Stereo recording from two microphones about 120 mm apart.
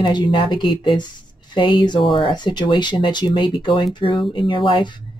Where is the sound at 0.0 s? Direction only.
40° left (ahead or behind).